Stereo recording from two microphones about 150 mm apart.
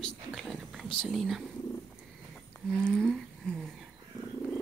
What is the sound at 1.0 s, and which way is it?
Speech, 5° left (ahead or behind).